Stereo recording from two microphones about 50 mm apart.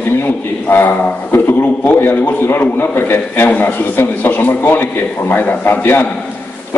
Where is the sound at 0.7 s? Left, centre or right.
Left.